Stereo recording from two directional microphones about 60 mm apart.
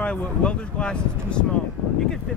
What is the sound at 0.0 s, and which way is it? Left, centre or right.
Speech, centre.